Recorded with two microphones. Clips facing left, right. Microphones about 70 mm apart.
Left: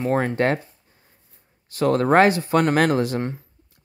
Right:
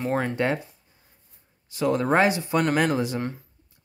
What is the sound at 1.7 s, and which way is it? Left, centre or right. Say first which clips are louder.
Speech: left 4 dB; left.